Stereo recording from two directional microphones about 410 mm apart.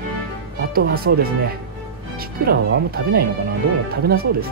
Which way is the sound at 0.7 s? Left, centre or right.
Right.